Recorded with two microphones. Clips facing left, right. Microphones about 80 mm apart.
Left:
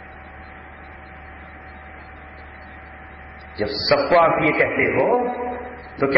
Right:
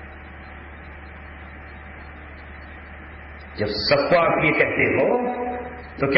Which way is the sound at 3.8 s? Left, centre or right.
Left.